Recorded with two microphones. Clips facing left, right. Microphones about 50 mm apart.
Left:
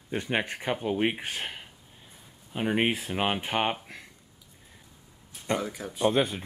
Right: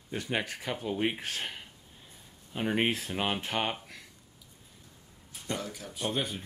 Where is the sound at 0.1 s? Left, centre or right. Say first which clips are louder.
Left 4 dB; left.